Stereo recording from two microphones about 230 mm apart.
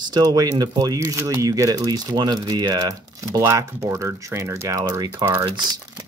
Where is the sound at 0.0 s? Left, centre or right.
Centre.